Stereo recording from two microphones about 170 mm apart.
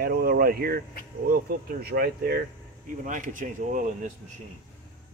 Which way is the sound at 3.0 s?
50° right (ahead or behind).